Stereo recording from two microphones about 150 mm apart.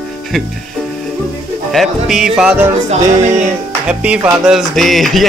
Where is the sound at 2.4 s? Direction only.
10° right (ahead or behind).